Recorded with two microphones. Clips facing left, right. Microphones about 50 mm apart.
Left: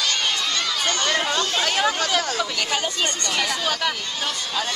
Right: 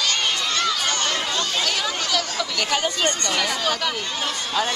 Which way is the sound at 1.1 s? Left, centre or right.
Centre.